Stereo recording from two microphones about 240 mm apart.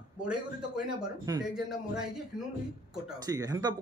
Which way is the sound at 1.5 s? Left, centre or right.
Centre.